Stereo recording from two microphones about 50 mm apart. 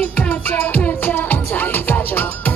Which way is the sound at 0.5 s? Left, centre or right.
Left.